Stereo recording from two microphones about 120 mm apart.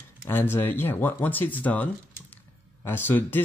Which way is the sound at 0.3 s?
15° left (ahead or behind).